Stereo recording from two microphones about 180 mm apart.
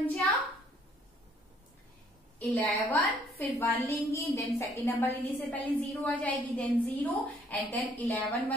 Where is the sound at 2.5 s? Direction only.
10° left (ahead or behind).